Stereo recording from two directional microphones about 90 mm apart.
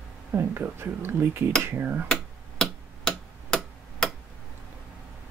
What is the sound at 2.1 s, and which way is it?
Tick-tock, 5° left (ahead or behind).